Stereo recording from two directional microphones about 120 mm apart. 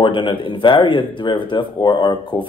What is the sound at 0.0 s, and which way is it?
Speech, 40° left (ahead or behind).